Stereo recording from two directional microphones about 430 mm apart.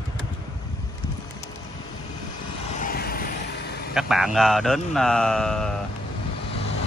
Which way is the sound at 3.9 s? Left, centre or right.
Centre.